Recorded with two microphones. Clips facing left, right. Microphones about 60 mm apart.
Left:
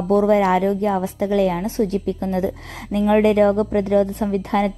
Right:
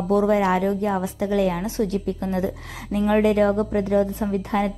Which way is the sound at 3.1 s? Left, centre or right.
Left.